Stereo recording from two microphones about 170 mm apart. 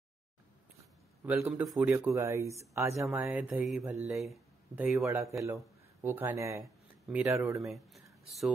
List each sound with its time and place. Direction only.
1.2 s a man's voice: 15° right (ahead or behind)
4.1 s speech: centre (ahead or behind)
5.0 s speech: 20° right (ahead or behind)
7.1 s speech: 5° right (ahead or behind)